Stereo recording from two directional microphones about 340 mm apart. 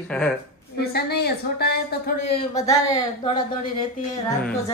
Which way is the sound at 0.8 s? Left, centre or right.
Left.